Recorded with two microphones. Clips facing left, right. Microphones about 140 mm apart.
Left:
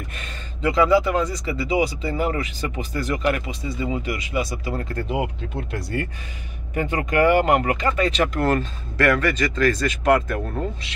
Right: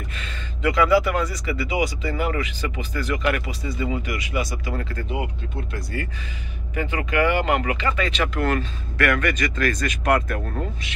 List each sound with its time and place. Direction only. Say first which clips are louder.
0.6 s speech: left 1 dB; 25° left (ahead or behind)
3.3 s speech: even; 25° left (ahead or behind)
6.7 s speech: left 2 dB; 45° left (ahead or behind); by 10.6 s 20° left (ahead or behind)